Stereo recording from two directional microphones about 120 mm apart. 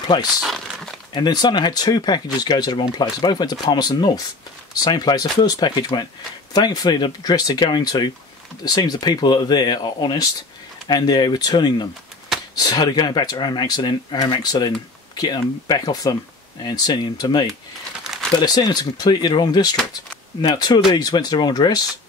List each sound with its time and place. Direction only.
0.4 s crumpling: centre (ahead or behind)
1.1 s speech: 35° left (ahead or behind)
18.0 s crumpling: 5° right (ahead or behind)
18.3 s speech: 35° left (ahead or behind)